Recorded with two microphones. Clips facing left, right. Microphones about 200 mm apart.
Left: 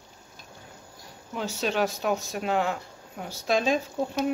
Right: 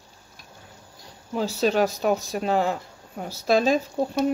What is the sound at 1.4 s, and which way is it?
Speech, 35° right (ahead or behind).